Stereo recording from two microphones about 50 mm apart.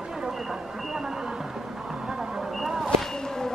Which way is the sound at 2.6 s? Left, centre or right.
Centre.